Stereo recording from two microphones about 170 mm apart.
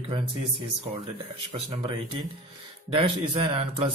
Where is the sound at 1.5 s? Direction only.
35° right (ahead or behind).